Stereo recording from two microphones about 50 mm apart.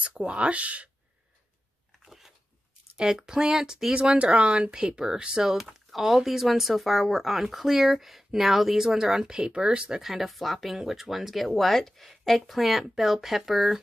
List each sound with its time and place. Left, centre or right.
0.0 s speech: right
2.0 s biting: centre
3.0 s speech: centre